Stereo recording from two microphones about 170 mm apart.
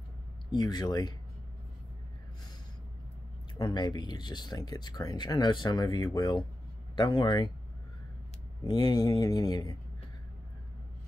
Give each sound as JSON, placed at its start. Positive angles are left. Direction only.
{"t": 0.5, "sound": "speech", "side_deg": 25}
{"t": 3.5, "sound": "speech", "side_deg": 25}
{"t": 8.6, "sound": "speech", "side_deg": 25}